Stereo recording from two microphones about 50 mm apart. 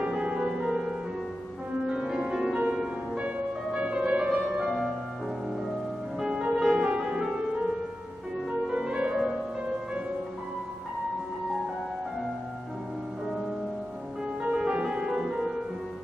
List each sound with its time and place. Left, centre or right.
0.0 s music: right
0.3 s music: centre
2.5 s music: right
6.1 s music: centre
8.5 s music: centre
14.4 s music: right